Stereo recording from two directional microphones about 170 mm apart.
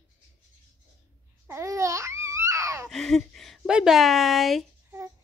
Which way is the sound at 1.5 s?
15° right (ahead or behind).